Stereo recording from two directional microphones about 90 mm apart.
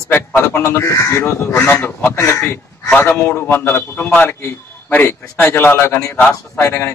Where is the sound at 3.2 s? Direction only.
25° left (ahead or behind).